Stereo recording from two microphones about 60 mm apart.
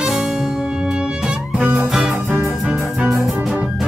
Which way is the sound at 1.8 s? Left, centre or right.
Centre.